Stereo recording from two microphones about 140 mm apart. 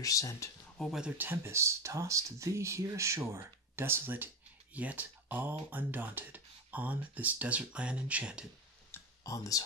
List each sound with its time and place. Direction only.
0.0 s speech: 25° left (ahead or behind)
0.7 s speech: 5° left (ahead or behind)
1.0 s speech: 15° right (ahead or behind)
8.9 s a sound: 25° left (ahead or behind)